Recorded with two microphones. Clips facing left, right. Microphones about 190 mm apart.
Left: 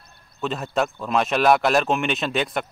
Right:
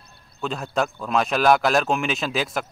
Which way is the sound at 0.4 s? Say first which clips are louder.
Left 1 dB; centre (ahead or behind).